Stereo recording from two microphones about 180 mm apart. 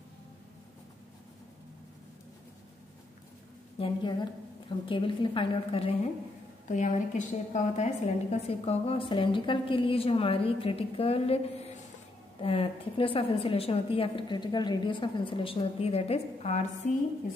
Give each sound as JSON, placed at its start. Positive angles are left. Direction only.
{"t": 3.8, "sound": "a woman's voice", "side_deg": 25}
{"t": 6.7, "sound": "a woman's voice", "side_deg": 45}